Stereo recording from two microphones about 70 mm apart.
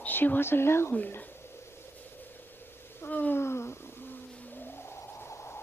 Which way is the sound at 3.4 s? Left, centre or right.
Left.